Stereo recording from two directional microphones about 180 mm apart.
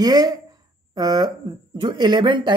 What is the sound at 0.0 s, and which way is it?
Speech, 20° right (ahead or behind).